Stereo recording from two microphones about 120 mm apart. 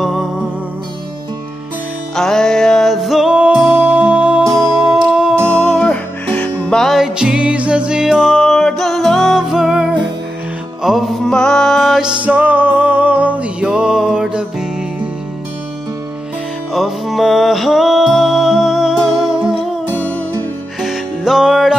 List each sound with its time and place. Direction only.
0.0 s music: centre (ahead or behind)
2.1 s music: 5° left (ahead or behind)
4.5 s music: 30° right (ahead or behind)
4.7 s music: 5° right (ahead or behind)
5.5 s music: 10° left (ahead or behind)
12.2 s music: 10° right (ahead or behind)
16.7 s music: centre (ahead or behind)
20.0 s music: 15° left (ahead or behind)
20.8 s music: 5° right (ahead or behind)